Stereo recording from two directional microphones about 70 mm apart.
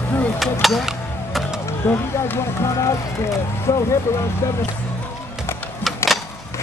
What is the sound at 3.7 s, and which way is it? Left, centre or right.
Speech, left.